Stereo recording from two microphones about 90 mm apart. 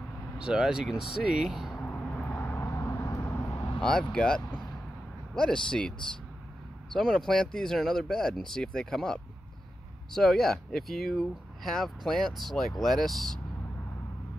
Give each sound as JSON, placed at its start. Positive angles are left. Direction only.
{"t": 0.4, "sound": "speech", "side_deg": -10}
{"t": 1.8, "sound": "vehicle", "side_deg": 15}
{"t": 4.1, "sound": "speech", "side_deg": 10}
{"t": 7.0, "sound": "speech", "side_deg": 5}